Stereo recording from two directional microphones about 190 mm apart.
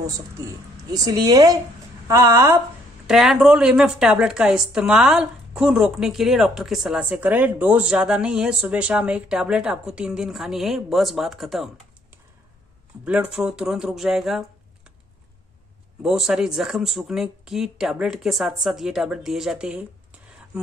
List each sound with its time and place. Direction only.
0.0 s a woman's voice: 20° right (ahead or behind)
3.1 s a woman's voice: centre (ahead or behind)
13.0 s a woman's voice: 5° right (ahead or behind)
16.0 s a woman's voice: 5° right (ahead or behind)